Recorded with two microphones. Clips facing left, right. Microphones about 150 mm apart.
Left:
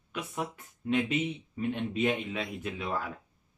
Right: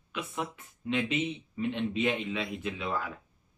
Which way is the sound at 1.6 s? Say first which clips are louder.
Even; 45° left (ahead or behind).